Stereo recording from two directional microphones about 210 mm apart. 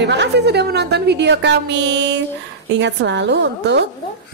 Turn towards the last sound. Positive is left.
turn(degrees=-55)  # may be behind; listen again after turning